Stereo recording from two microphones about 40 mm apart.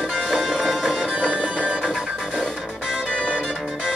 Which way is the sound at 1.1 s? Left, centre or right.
Right.